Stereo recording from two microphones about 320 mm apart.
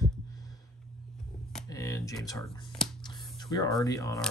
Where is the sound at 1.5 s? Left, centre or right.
Centre.